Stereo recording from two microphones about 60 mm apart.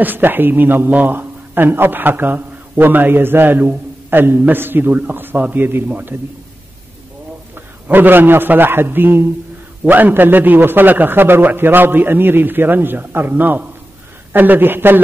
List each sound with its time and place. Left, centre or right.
0.0 s a man's voice: right
5.9 s a man's voice: right
7.5 s a man's voice: right